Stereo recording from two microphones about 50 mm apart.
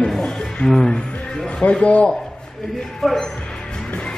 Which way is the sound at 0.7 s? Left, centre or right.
Centre.